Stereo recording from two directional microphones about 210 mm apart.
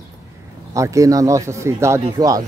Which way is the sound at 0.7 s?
15° right (ahead or behind).